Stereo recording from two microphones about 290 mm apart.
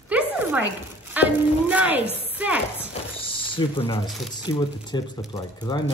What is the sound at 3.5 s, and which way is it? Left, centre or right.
Speech, centre.